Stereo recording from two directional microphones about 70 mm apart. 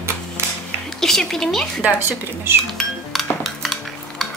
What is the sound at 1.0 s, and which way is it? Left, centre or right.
Dishes, centre.